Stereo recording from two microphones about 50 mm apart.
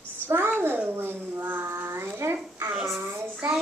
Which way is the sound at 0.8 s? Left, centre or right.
Right.